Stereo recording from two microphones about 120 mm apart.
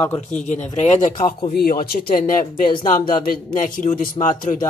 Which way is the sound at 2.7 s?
40° left (ahead or behind).